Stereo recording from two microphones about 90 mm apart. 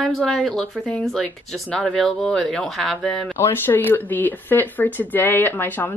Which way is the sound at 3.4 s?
25° left (ahead or behind).